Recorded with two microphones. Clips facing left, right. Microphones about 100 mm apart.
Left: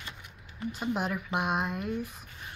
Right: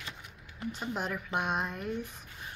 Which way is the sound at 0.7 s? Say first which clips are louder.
Left 5 dB; 10° left (ahead or behind).